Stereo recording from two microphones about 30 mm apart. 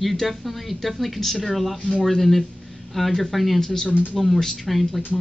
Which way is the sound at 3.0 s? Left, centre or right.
Centre.